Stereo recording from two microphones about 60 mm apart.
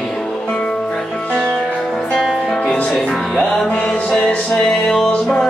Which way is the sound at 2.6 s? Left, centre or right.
Centre.